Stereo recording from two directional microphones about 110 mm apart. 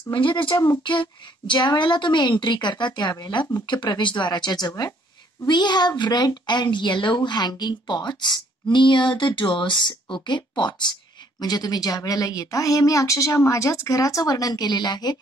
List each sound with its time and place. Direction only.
0.1 s speech: 50° left (ahead or behind)